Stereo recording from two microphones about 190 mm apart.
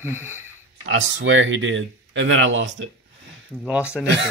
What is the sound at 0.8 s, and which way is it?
Speech, 90° right.